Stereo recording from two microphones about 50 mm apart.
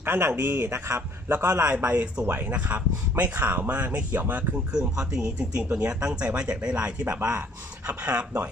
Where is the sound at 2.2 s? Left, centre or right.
Right.